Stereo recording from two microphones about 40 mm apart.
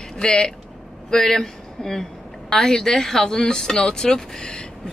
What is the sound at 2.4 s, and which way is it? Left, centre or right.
Speech, centre.